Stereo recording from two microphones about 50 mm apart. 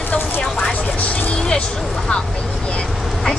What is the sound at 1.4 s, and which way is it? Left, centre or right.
Speech, centre.